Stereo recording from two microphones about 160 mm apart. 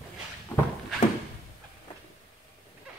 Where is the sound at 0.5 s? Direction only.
10° left (ahead or behind).